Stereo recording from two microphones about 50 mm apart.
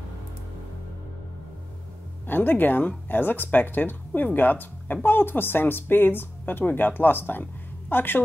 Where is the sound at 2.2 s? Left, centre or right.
Left.